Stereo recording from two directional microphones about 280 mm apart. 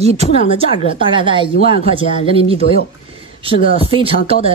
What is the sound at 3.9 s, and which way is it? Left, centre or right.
Speech, centre.